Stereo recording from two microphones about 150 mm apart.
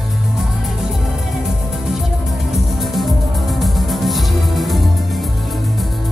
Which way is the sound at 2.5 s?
Centre (ahead or behind).